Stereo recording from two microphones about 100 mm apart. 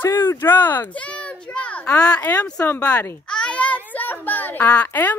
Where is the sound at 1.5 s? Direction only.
15° left (ahead or behind).